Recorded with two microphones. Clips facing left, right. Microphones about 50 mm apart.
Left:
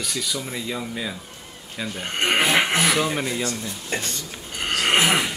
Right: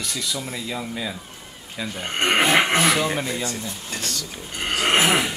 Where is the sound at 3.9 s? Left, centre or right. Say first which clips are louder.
Left 4 dB; left.